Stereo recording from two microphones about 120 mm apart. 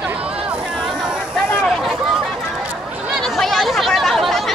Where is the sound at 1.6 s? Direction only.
Centre (ahead or behind).